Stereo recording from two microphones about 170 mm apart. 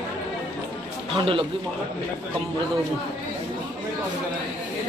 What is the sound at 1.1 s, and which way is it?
Speech, 30° right (ahead or behind).